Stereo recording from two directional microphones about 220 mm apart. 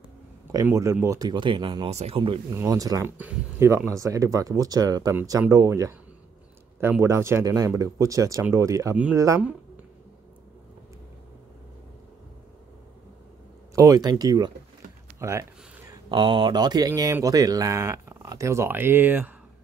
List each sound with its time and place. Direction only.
0.5 s speech: 15° right (ahead or behind)
13.7 s speech: 15° right (ahead or behind)